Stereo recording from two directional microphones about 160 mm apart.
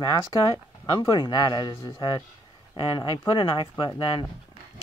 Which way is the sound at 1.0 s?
30° left (ahead or behind).